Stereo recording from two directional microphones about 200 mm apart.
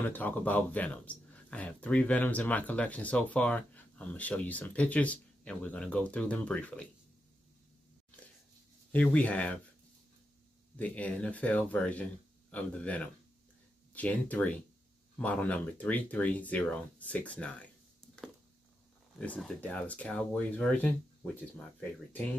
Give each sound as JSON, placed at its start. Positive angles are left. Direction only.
{"t": 0.0, "sound": "speech", "side_deg": 10}
{"t": 8.9, "sound": "speech", "side_deg": 5}
{"t": 10.8, "sound": "speech", "side_deg": 5}
{"t": 19.1, "sound": "speech", "side_deg": 5}